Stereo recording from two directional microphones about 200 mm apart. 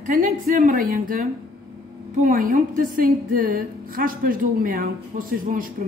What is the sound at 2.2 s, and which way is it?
A woman's voice, 45° right (ahead or behind).